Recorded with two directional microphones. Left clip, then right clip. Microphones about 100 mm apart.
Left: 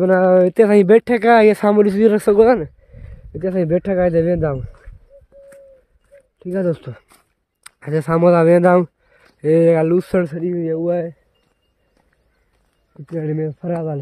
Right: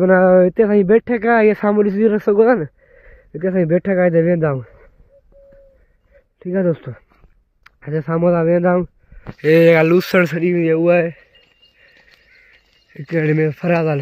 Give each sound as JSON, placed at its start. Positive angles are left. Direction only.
{"t": 0.0, "sound": "speech", "side_deg": 10}
{"t": 0.6, "sound": "speech", "side_deg": 35}
{"t": 2.9, "sound": "speech", "side_deg": 0}
{"t": 6.4, "sound": "speech", "side_deg": 10}
{"t": 6.9, "sound": "a sound", "side_deg": 35}
{"t": 7.6, "sound": "speech", "side_deg": 40}
{"t": 9.4, "sound": "speech", "side_deg": 5}
{"t": 10.2, "sound": "speech", "side_deg": -25}
{"t": 10.5, "sound": "speech", "side_deg": -40}
{"t": 12.9, "sound": "speech", "side_deg": -55}